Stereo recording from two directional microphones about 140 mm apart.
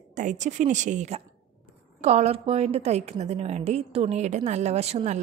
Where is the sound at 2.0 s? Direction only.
50° right (ahead or behind).